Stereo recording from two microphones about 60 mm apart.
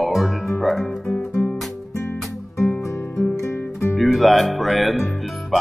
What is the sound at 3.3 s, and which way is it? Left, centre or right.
Music, left.